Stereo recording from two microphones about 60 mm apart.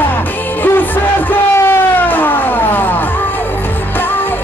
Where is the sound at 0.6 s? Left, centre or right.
Left.